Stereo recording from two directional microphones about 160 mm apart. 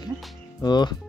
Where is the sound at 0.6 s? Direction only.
25° left (ahead or behind).